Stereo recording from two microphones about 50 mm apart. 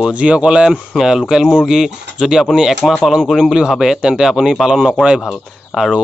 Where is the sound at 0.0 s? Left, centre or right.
Right.